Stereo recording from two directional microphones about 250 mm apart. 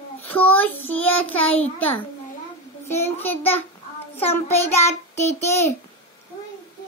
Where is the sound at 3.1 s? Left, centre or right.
Centre.